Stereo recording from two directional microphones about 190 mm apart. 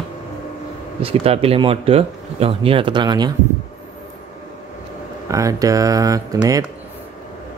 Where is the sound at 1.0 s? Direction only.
30° right (ahead or behind).